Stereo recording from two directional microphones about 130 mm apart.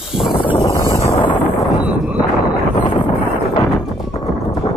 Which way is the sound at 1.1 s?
40° left (ahead or behind).